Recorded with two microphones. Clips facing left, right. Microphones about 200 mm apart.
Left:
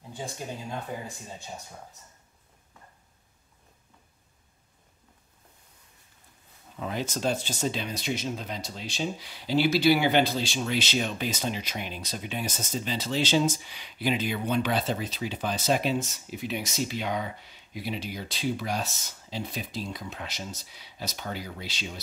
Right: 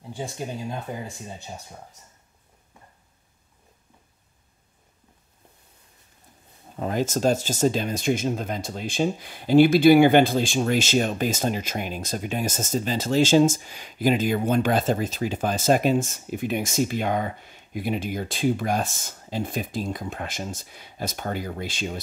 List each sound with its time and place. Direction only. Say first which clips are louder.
0.9 s speech: right 3 dB; 20° right (ahead or behind)
6.7 s speech: right 7 dB; 45° right (ahead or behind)